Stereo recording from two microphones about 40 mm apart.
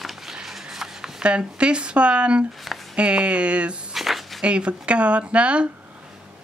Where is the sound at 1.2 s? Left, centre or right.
Right.